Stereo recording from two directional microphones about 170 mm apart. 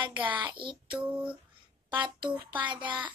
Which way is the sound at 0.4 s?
30° right (ahead or behind).